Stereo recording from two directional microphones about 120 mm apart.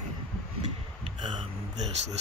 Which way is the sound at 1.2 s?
40° right (ahead or behind).